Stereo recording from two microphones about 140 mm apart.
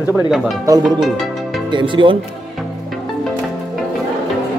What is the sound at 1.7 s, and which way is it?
Speech, 35° right (ahead or behind).